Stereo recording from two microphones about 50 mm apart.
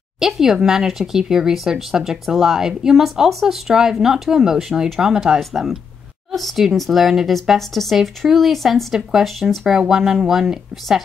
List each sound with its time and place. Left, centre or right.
0.2 s speech: centre